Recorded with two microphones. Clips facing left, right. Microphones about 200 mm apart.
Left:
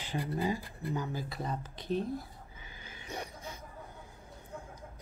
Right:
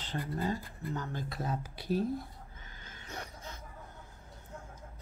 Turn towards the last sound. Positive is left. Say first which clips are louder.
# left 3 dB
turn(degrees=15)  # may be behind; listen again after turning